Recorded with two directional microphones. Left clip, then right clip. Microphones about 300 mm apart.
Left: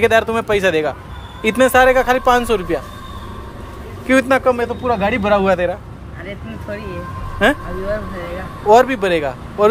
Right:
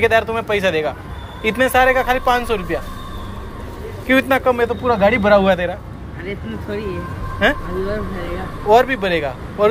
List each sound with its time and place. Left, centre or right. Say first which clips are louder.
0.0 s speech: left 2 dB; left
4.1 s speech: left 1 dB; centre
8.6 s speech: left 2 dB; centre